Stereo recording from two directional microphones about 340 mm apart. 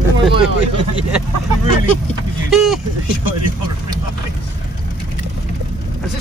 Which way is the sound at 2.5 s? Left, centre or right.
Centre.